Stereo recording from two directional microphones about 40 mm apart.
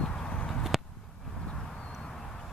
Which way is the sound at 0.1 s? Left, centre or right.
Left.